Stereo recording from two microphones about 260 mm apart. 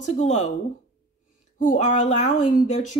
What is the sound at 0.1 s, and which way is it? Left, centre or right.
Speech, left.